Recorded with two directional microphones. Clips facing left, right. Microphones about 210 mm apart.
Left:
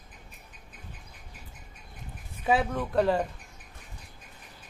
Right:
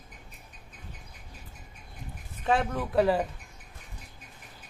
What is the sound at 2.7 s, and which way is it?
Speech, 5° right (ahead or behind).